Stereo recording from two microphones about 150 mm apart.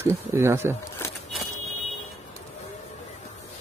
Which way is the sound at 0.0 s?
15° right (ahead or behind).